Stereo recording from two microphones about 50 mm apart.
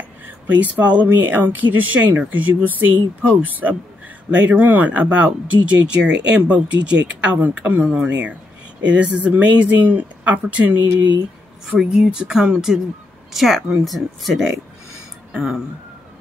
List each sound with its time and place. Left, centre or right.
0.5 s speech: right
1.0 s speech: right
11.7 s speech: centre